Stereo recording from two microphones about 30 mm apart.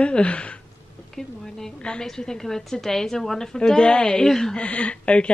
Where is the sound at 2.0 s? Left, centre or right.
Centre.